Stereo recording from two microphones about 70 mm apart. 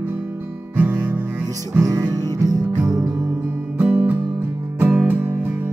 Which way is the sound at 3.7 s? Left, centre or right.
Right.